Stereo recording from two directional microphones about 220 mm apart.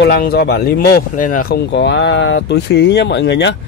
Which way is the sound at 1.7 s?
50° left (ahead or behind).